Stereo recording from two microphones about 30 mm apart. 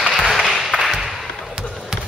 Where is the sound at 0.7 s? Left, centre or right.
Right.